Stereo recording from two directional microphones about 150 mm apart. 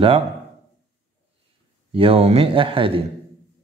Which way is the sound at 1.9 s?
40° right (ahead or behind).